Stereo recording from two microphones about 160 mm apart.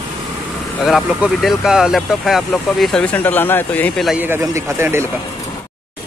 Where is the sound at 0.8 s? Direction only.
Centre (ahead or behind).